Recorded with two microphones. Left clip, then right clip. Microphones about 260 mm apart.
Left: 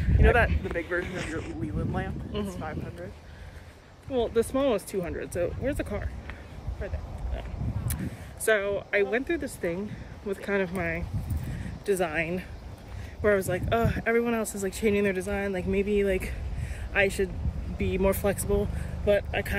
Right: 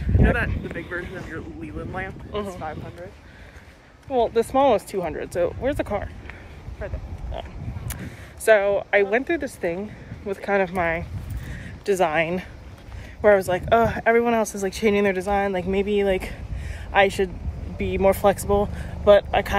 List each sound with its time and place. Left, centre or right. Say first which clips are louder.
0.2 s speech: left 1 dB; centre
2.3 s speech: right 6 dB; centre
4.1 s speech: right 6 dB; centre
6.8 s speech: right 4 dB; centre
8.5 s speech: right 8 dB; centre